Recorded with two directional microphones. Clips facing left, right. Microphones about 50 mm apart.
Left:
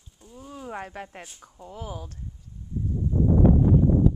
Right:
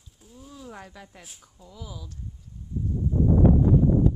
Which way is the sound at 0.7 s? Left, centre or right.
Left.